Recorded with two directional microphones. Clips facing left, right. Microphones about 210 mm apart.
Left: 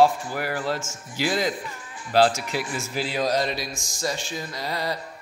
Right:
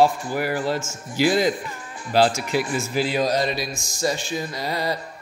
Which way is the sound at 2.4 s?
50° right (ahead or behind).